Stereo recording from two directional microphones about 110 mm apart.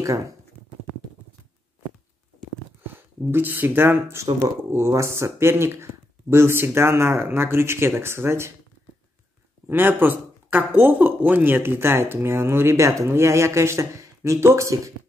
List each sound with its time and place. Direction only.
0.0 s speech: 30° right (ahead or behind)
2.9 s speech: 20° right (ahead or behind)
9.7 s speech: 20° right (ahead or behind)